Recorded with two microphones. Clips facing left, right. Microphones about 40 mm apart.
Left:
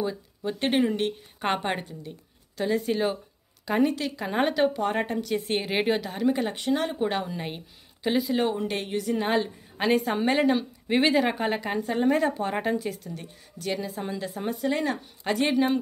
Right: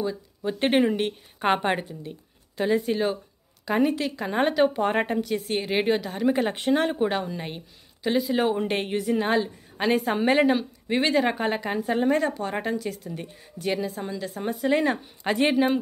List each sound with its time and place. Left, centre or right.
0.4 s a woman's voice: centre
4.7 s speech: right
5.5 s a woman's voice: centre
6.3 s speech: right
7.1 s a woman's voice: centre
8.5 s speech: right
9.0 s a woman's voice: centre
10.9 s speech: centre
11.1 s a woman's voice: centre
13.1 s a woman's voice: centre
13.9 s speech: centre
14.2 s a woman's voice: centre
14.7 s a woman's voice: centre